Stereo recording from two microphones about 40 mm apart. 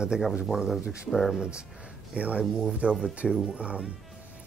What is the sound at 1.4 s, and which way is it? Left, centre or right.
Speech, right.